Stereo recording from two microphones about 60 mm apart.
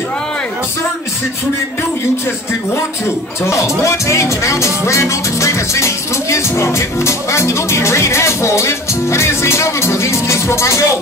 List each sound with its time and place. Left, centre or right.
3.4 s music: left